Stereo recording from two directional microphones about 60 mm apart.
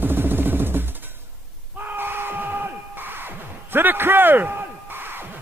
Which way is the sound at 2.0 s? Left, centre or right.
Right.